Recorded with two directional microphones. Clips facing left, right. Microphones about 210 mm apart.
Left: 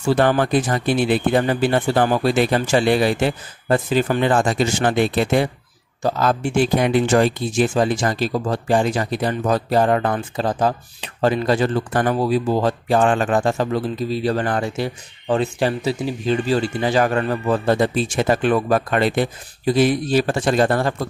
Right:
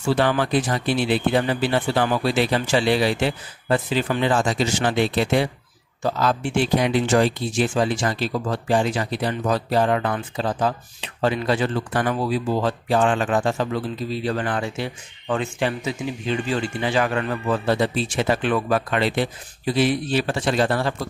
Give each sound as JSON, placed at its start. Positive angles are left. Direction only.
{"t": 0.0, "sound": "speech", "side_deg": 45}